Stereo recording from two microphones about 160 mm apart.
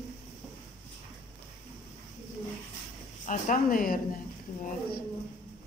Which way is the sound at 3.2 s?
55° left (ahead or behind).